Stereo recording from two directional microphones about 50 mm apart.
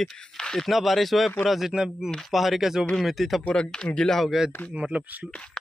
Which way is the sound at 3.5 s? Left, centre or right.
Centre.